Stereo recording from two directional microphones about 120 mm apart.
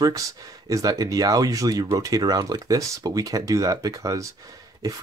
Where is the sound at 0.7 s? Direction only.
30° right (ahead or behind).